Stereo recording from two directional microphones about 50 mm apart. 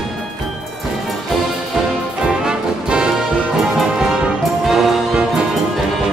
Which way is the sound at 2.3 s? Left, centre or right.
Centre.